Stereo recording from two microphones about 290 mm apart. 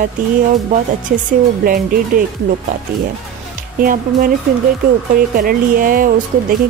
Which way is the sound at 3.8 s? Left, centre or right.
Right.